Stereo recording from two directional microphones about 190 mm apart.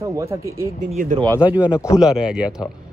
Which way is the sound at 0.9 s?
45° right (ahead or behind).